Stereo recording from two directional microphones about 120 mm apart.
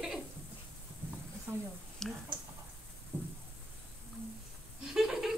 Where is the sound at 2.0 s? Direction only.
5° left (ahead or behind).